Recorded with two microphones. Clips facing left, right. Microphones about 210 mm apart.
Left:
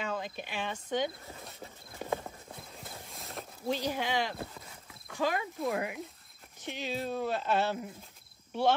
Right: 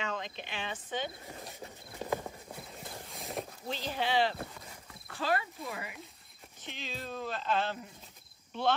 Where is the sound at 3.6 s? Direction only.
15° left (ahead or behind).